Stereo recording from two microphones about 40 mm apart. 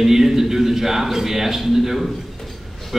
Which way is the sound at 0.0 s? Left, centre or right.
Centre.